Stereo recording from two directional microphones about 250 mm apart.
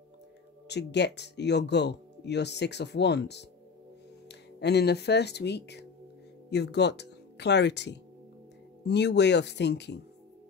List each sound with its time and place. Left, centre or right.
0.7 s speech: left